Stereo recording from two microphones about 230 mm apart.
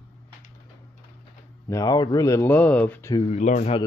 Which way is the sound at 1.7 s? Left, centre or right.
Centre.